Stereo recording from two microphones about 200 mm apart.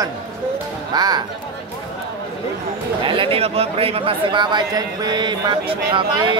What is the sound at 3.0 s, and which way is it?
Speech, 25° right (ahead or behind).